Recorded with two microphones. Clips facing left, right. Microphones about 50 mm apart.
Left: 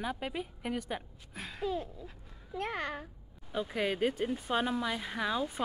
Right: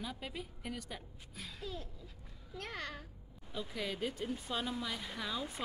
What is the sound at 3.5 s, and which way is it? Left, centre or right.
A woman's voice, left.